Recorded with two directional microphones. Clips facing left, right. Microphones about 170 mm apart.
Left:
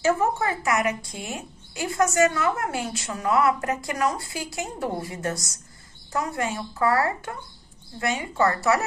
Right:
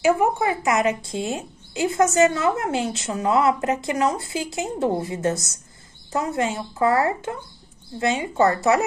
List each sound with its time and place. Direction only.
0.0 s a woman's voice: 15° right (ahead or behind)